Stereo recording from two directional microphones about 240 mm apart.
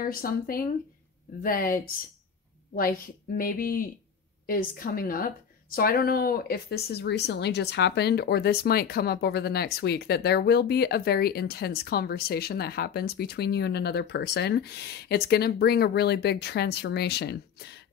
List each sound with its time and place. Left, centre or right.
0.0 s a woman's voice: left